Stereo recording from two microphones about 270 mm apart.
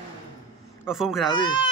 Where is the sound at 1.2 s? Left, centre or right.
Centre.